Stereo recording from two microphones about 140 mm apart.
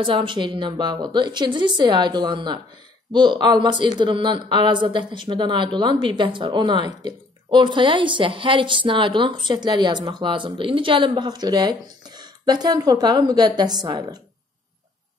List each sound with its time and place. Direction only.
0.0 s a woman's voice: 35° right (ahead or behind)